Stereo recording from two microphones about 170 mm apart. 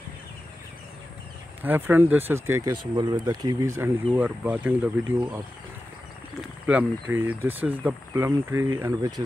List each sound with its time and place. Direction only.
1.6 s speech: 10° right (ahead or behind)
3.0 s speech: 25° right (ahead or behind); by 5.4 s 10° right (ahead or behind)
6.6 s speech: 10° right (ahead or behind)